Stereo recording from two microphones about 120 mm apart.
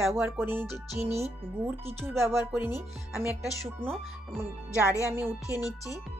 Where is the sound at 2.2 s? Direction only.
20° right (ahead or behind).